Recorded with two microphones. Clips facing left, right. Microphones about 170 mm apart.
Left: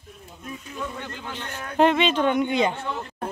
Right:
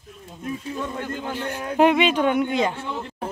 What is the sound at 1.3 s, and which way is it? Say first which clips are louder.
A man's voice: right 7 dB; 10° right (ahead or behind).